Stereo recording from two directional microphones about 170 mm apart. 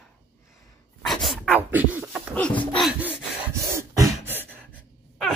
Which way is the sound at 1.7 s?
10° right (ahead or behind).